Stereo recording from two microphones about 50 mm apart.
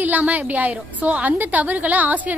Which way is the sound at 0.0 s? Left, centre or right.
Right.